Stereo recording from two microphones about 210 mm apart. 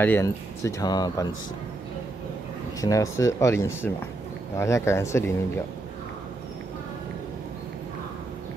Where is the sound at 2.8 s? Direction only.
15° left (ahead or behind).